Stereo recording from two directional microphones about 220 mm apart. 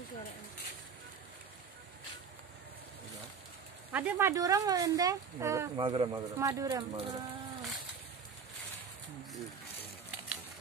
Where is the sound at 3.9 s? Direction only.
10° right (ahead or behind).